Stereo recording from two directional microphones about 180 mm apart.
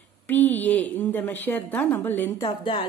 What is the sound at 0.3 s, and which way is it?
A woman's voice, 10° left (ahead or behind).